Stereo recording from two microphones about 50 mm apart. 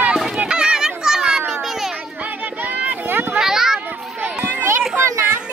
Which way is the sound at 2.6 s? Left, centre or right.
Right.